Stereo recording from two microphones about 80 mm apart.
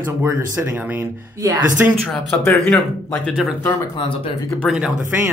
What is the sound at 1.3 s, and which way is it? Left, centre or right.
Speech, right.